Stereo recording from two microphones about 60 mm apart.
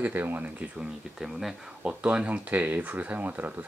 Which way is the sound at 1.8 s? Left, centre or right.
Right.